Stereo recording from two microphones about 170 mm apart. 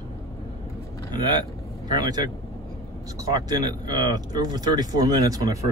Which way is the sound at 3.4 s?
25° right (ahead or behind).